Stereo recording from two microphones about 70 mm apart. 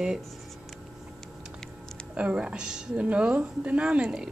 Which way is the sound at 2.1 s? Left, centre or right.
Centre.